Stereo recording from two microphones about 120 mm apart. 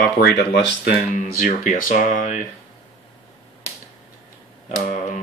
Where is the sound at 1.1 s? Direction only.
90° left.